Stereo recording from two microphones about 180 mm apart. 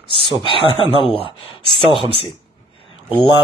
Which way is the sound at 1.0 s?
30° left (ahead or behind).